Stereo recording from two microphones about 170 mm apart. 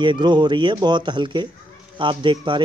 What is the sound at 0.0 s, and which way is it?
Speech, 25° right (ahead or behind).